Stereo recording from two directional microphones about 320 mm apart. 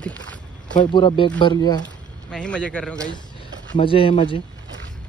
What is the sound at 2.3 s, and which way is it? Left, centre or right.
Speech, centre.